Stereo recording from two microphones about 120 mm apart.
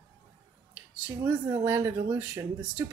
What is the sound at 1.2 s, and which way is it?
A woman's voice, 20° right (ahead or behind).